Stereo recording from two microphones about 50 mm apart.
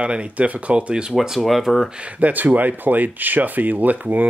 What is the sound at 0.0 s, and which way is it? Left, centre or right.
Speech, right.